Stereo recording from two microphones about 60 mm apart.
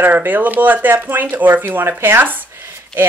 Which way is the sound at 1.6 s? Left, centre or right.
Right.